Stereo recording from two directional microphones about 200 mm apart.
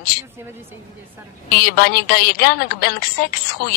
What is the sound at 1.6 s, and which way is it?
A woman's voice, 50° left (ahead or behind).